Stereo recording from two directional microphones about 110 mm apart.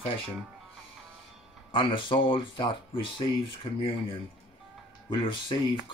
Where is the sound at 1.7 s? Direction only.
50° left (ahead or behind).